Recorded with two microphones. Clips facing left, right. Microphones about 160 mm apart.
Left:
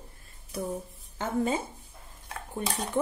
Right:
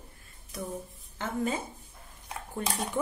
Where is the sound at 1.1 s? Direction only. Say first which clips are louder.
Left 3 dB; 30° left (ahead or behind).